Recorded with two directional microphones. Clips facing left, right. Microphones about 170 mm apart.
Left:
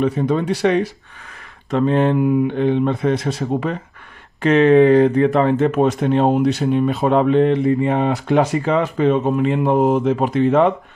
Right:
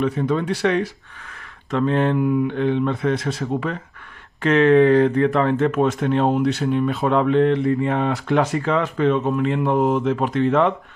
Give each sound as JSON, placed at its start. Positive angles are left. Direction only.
{"t": 0.0, "sound": "speech", "side_deg": 20}